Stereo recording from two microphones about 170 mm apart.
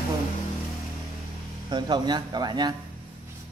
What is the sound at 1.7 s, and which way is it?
Speech, 25° right (ahead or behind).